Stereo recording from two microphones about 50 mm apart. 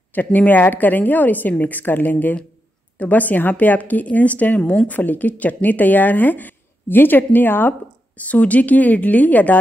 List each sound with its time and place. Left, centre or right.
0.1 s speech: left
8.2 s speech: left